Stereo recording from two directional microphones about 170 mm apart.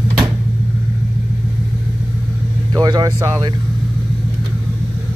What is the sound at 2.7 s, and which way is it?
Speech, 20° right (ahead or behind).